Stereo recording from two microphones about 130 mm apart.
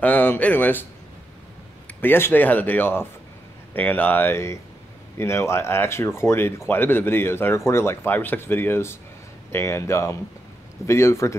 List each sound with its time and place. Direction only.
0.0 s speech: 10° left (ahead or behind)
2.0 s speech: 15° left (ahead or behind)